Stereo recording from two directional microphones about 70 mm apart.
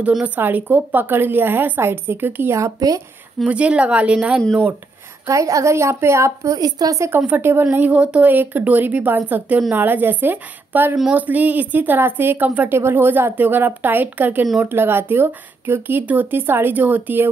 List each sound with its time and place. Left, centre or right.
0.4 s speech: right
2.5 s a woman's voice: right
3.4 s speech: centre
5.2 s a woman's voice: right
6.6 s a woman's voice: right
7.1 s speech: right